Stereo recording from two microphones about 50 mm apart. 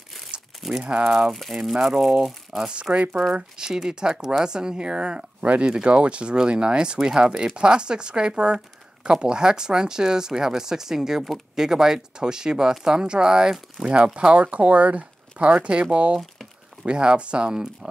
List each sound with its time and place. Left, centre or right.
0.6 s crumpling: centre
0.8 s speech: centre
1.1 s speech: centre
2.6 s speech: right